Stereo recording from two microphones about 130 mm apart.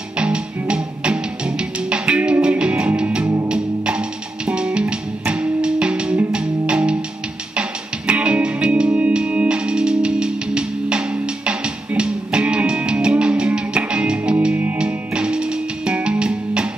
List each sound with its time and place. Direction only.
0.2 s music: 5° right (ahead or behind)
8.1 s music: 10° right (ahead or behind)